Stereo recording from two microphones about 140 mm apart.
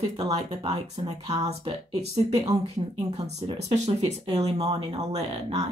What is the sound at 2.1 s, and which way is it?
Speech, 45° right (ahead or behind).